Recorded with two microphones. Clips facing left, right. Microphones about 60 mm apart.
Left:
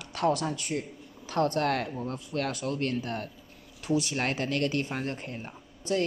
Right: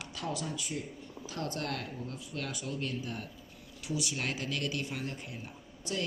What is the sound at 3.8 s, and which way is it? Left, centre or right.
A woman's voice, left.